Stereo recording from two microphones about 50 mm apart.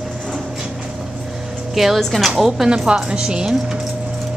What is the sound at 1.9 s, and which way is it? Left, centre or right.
Speech, centre.